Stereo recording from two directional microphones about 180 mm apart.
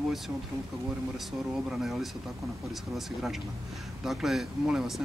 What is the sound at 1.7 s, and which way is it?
Speech, centre (ahead or behind).